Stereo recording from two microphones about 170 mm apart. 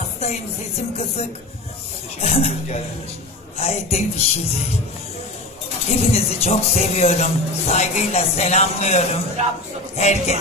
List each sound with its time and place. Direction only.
0.2 s music: 40° left (ahead or behind)
2.1 s speech: 40° left (ahead or behind)
5.9 s speech: 40° left (ahead or behind)